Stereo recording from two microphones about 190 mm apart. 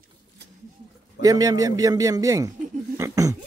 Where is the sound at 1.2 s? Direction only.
20° right (ahead or behind).